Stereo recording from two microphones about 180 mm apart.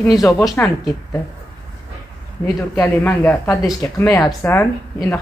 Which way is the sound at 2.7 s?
10° left (ahead or behind).